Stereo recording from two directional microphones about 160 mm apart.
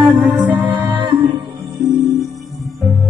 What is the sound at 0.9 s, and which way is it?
Music, 30° right (ahead or behind).